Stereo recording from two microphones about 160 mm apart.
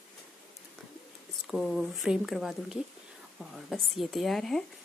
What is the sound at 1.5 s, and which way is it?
Speech, 5° right (ahead or behind).